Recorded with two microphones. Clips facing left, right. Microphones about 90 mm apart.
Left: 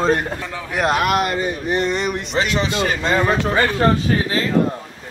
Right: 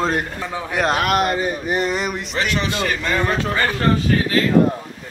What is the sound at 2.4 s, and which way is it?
A man's voice, 25° left (ahead or behind).